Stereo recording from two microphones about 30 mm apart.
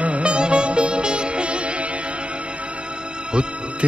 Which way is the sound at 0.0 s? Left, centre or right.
Right.